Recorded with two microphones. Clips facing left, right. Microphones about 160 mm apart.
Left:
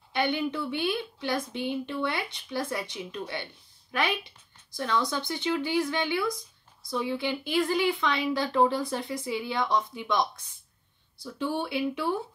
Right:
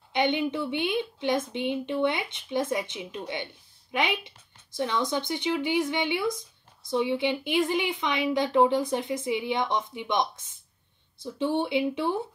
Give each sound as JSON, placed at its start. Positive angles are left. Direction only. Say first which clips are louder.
{"t": 0.1, "sound": "a woman's voice", "louder": "right 2 dB", "side_deg": -20}